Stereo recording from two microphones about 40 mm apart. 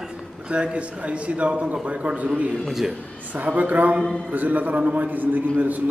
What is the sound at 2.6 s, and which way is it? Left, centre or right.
Speech, centre.